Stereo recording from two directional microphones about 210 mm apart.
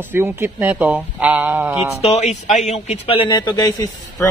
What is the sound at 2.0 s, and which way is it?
A man's voice, 30° left (ahead or behind).